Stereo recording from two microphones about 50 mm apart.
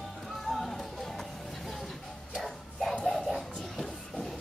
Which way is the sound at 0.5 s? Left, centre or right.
Centre.